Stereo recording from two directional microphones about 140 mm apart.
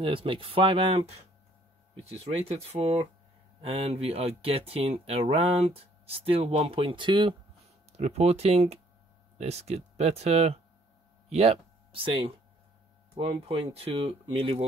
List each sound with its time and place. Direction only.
0.0 s speech: 40° right (ahead or behind)
8.0 s speech: 50° right (ahead or behind)